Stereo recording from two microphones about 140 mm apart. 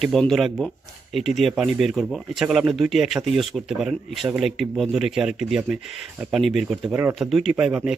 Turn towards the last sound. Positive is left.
turn(degrees=-5)  # may be behind; listen again after turning